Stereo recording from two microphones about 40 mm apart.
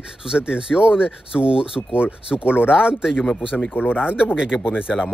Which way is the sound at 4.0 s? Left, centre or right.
Right.